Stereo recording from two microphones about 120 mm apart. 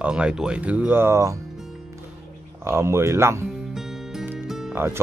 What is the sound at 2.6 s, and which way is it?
Speech, 20° right (ahead or behind).